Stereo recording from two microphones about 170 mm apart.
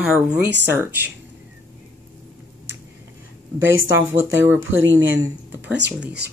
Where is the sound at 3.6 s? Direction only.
90° right.